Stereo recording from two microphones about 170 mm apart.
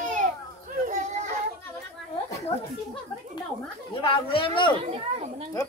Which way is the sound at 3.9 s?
30° left (ahead or behind).